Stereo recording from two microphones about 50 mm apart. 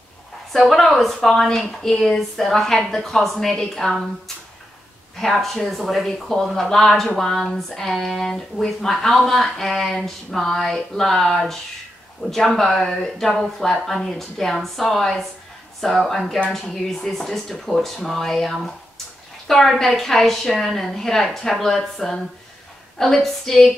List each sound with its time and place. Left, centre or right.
0.5 s speech: centre
5.1 s a woman's voice: centre